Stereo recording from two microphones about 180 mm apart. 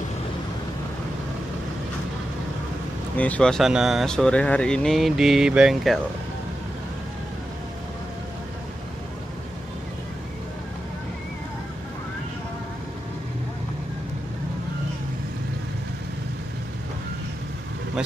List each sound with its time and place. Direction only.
3.2 s speech: 5° left (ahead or behind)